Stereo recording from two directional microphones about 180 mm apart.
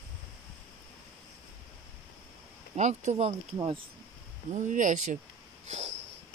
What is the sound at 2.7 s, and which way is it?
Speech, 40° right (ahead or behind).